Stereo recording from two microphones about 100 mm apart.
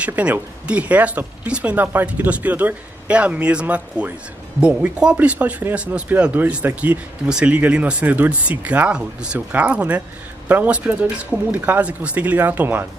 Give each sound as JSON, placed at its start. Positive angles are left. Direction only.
{"t": 0.0, "sound": "speech", "side_deg": -15}